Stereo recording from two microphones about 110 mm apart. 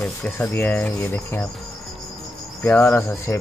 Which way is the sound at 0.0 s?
20° left (ahead or behind).